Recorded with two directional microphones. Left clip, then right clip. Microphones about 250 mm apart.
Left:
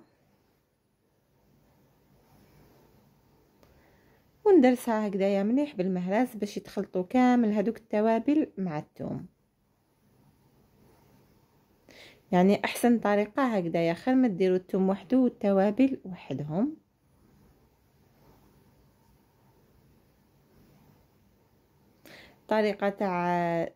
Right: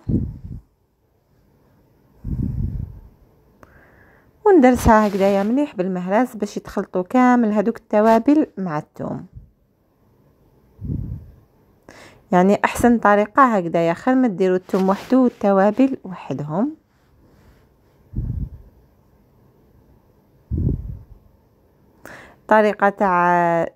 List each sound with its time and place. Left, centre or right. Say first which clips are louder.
3.6 s sniff: right 14 dB; right
4.4 s a woman's voice: right 8 dB; right
11.8 s a woman's voice: right 8 dB; centre
22.0 s speech: right 13 dB; right